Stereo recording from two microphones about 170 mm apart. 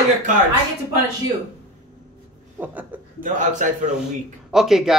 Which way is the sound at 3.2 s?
45° right (ahead or behind).